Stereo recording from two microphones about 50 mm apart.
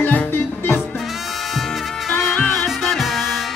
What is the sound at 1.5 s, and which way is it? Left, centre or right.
Music, centre.